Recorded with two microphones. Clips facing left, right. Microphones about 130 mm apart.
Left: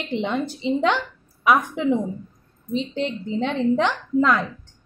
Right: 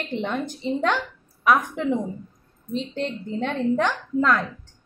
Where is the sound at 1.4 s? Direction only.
10° left (ahead or behind).